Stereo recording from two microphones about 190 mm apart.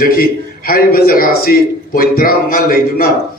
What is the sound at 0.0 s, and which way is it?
A man's voice, 50° left (ahead or behind).